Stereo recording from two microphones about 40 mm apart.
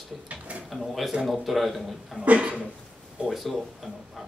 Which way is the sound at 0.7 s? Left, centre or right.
Centre.